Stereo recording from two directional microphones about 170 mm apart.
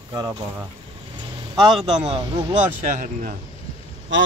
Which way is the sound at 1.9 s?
25° right (ahead or behind).